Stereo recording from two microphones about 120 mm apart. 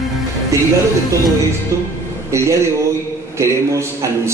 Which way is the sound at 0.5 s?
25° right (ahead or behind).